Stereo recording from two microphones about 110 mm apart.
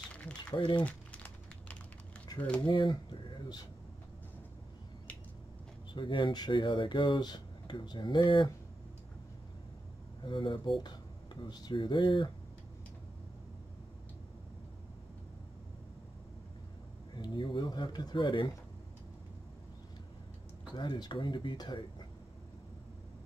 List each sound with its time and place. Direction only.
0.1 s typing: 10° left (ahead or behind)
0.6 s speech: 50° left (ahead or behind)
0.8 s crumpling: 15° left (ahead or behind)
2.6 s speech: 40° left (ahead or behind)
5.9 s speech: 50° left (ahead or behind)
10.2 s speech: 45° left (ahead or behind)
17.1 s speech: 45° left (ahead or behind)
20.7 s speech: 45° left (ahead or behind)